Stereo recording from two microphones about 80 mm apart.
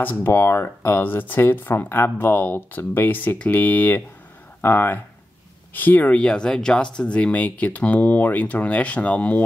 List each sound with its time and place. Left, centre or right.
0.0 s speech: left